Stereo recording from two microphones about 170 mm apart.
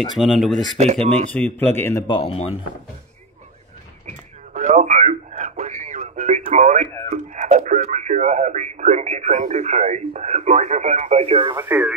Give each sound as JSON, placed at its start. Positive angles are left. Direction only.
{"t": 0.0, "sound": "speech", "side_deg": 0}
{"t": 1.3, "sound": "speech", "side_deg": 10}
{"t": 2.0, "sound": "speech", "side_deg": 30}
{"t": 4.6, "sound": "radio", "side_deg": -45}
{"t": 7.1, "sound": "speech", "side_deg": -45}
{"t": 11.5, "sound": "speech", "side_deg": -10}